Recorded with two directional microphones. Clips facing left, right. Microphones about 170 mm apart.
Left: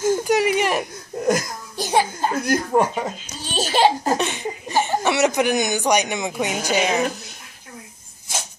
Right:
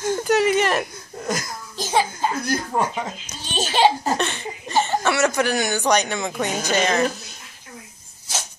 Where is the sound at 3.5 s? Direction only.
10° left (ahead or behind).